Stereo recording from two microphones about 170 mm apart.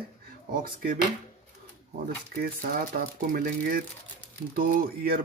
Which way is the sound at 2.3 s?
60° right (ahead or behind).